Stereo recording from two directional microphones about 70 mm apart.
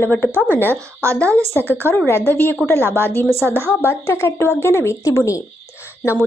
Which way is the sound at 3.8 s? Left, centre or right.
Left.